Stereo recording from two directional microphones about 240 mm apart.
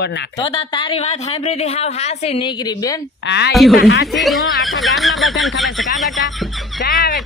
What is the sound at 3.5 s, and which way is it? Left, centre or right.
Speech, centre.